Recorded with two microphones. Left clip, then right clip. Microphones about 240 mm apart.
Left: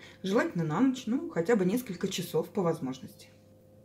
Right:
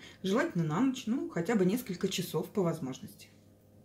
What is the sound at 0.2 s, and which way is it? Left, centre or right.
Speech, centre.